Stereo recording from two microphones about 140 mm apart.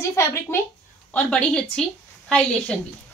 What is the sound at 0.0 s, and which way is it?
Speech, 20° left (ahead or behind).